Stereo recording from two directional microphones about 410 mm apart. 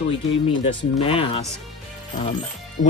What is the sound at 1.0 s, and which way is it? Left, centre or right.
Speech, centre.